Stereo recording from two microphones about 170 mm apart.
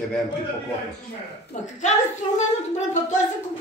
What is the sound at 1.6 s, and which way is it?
Speech, 45° left (ahead or behind).